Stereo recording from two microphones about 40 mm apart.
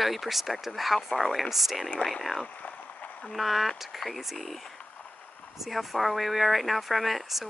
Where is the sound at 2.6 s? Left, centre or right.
Left.